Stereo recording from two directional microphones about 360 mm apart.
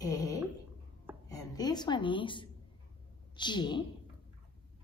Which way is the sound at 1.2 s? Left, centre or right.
Centre.